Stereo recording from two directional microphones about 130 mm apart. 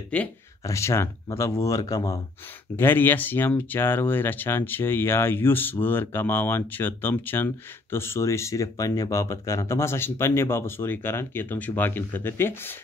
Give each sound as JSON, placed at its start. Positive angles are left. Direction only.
{"t": 0.7, "sound": "speech", "side_deg": 20}
{"t": 2.7, "sound": "speech", "side_deg": 15}